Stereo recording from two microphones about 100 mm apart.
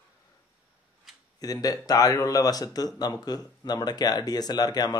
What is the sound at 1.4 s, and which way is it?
Speech, 40° left (ahead or behind).